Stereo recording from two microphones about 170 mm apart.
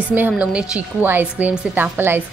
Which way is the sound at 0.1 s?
10° right (ahead or behind).